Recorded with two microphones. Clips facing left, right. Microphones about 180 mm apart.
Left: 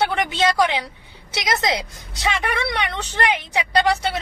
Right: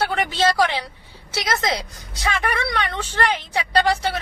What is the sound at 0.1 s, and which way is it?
A woman's voice, 15° left (ahead or behind).